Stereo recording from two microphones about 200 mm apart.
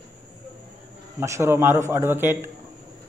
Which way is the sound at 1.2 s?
15° right (ahead or behind).